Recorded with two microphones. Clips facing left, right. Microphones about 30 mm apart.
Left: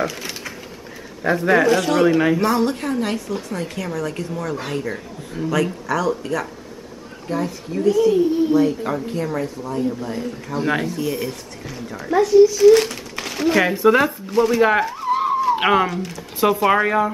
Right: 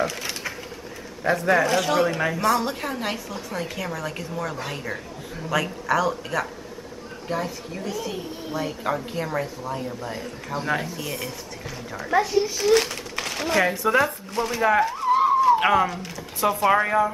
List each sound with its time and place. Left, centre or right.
0.0 s a sound: centre
1.3 s speech: centre
1.7 s speech: centre
2.6 s speech: centre
10.6 s speech: centre
10.9 s speech: centre
12.2 s a child's voice: centre
12.5 s speech: centre
13.7 s speech: centre
14.0 s speech: centre
14.8 s a sound: centre
15.5 s speech: left
15.9 s speech: centre
16.3 s speech: centre